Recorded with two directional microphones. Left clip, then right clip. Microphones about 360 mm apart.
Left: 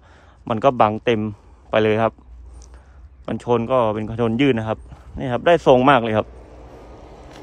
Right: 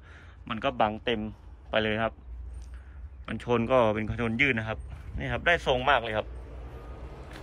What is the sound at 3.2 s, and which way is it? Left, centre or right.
Speech, centre.